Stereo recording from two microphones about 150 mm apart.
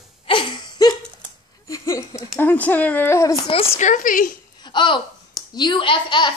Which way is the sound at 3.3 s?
35° left (ahead or behind).